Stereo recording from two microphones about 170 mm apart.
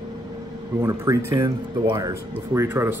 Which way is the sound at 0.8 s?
15° right (ahead or behind).